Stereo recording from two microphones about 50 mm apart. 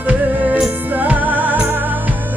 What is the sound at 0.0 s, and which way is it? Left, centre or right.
Music, right.